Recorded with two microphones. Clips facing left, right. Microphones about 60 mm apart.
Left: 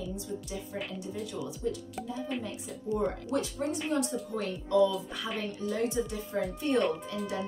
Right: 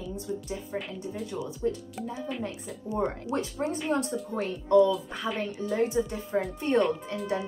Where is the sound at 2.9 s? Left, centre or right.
Right.